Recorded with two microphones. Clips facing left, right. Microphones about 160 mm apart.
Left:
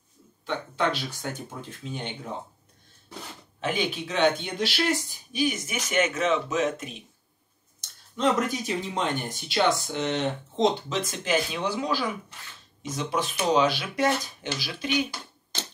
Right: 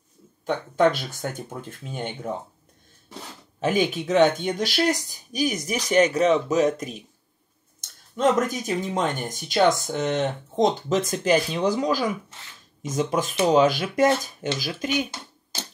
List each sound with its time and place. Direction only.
0.5 s speech: 45° right (ahead or behind)
3.6 s speech: 45° right (ahead or behind)